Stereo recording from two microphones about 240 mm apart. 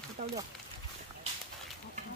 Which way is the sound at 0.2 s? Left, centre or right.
Right.